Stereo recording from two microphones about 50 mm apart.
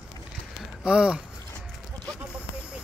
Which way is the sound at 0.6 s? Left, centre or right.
Centre.